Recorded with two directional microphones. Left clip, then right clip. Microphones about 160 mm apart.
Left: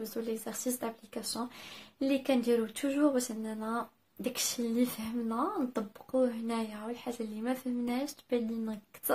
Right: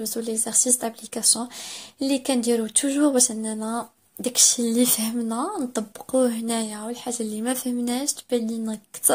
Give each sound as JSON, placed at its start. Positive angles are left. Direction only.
{"t": 0.0, "sound": "speech", "side_deg": -35}